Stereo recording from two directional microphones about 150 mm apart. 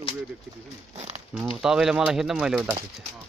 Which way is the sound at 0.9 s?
45° right (ahead or behind).